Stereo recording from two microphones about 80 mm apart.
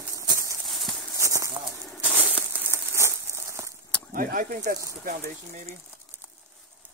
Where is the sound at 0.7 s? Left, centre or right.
Centre.